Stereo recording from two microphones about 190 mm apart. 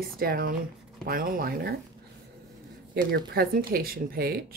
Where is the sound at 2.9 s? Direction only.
55° right (ahead or behind).